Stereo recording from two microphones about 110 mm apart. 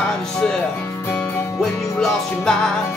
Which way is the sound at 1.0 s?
25° left (ahead or behind).